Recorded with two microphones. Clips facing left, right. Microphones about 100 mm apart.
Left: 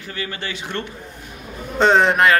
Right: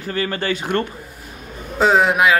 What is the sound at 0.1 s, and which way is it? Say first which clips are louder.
Speech: right 7 dB; 45° right (ahead or behind).